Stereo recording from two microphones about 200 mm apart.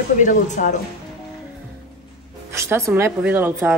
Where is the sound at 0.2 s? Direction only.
40° left (ahead or behind).